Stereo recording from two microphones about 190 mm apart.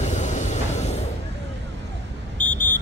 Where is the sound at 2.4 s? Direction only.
5° left (ahead or behind).